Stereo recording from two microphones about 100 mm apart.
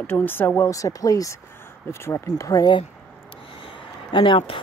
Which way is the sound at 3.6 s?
55° left (ahead or behind).